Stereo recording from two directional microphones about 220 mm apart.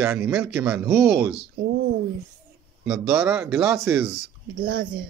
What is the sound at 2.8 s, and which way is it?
Speech, 5° right (ahead or behind).